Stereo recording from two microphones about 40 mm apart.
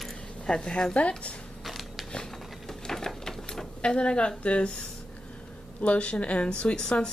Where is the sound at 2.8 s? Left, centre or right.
Centre.